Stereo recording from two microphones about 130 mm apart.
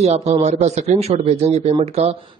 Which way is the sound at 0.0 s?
55° right (ahead or behind).